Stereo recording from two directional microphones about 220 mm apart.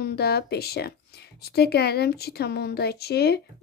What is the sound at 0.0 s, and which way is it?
Speech, 45° left (ahead or behind).